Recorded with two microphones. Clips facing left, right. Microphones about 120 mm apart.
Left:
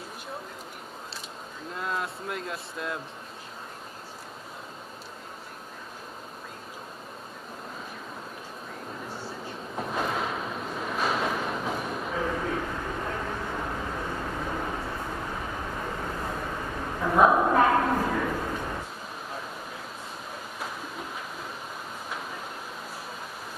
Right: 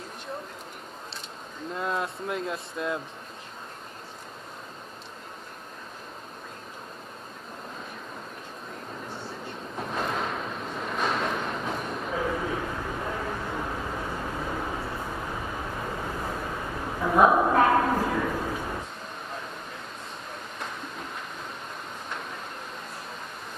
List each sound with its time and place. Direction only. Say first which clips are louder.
1.8 s speech: right 2 dB; centre (ahead or behind)
9.1 s train: even; centre (ahead or behind)
20.5 s a sound: left 1 dB; 5° left (ahead or behind)